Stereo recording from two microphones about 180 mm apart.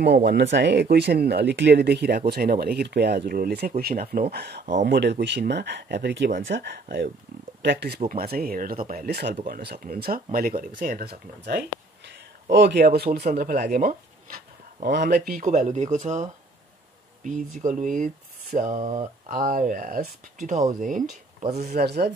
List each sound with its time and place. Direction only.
0.0 s speech: 65° right (ahead or behind)
8.0 s speech: 50° right (ahead or behind)
13.2 s speech: 45° right (ahead or behind)
15.5 s speech: 40° right (ahead or behind)
17.6 s speech: 45° right (ahead or behind)
21.4 s speech: 40° right (ahead or behind)
21.7 s speech: 65° right (ahead or behind)